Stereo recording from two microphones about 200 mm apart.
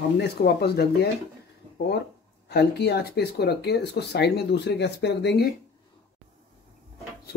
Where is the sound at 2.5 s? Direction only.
55° left (ahead or behind).